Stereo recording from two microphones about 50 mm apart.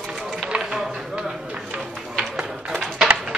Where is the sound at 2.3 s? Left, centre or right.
Right.